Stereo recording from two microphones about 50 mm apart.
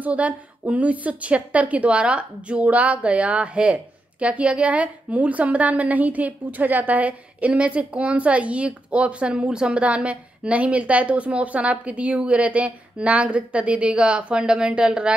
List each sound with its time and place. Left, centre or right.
0.0 s a woman's voice: right